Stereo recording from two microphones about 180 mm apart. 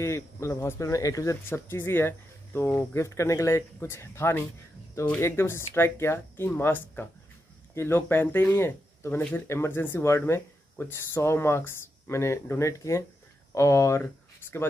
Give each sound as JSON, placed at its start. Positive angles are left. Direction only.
{"t": 0.0, "sound": "speech", "side_deg": 15}